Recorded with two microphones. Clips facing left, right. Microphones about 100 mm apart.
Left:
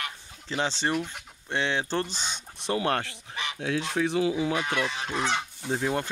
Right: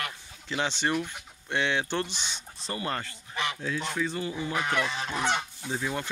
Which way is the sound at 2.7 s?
75° left (ahead or behind).